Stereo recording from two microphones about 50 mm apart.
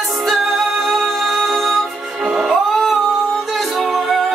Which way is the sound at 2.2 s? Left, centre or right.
Centre.